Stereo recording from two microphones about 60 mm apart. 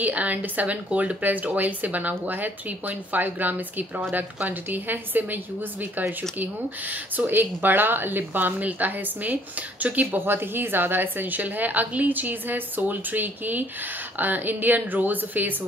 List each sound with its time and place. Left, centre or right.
0.0 s speech: right
10.2 s speech: right